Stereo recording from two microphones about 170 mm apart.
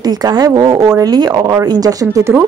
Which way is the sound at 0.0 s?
25° right (ahead or behind).